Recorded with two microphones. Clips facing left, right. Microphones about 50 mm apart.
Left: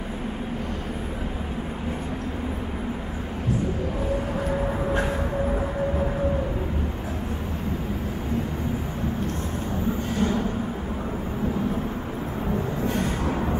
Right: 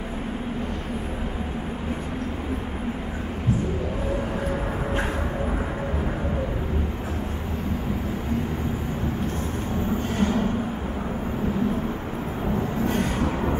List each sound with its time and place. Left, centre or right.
10.1 s vehicle: right
12.8 s music: right